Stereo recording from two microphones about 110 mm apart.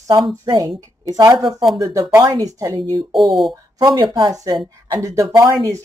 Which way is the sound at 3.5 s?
40° right (ahead or behind).